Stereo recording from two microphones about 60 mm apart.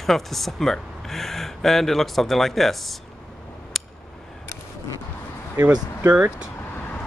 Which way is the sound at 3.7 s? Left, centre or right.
Centre.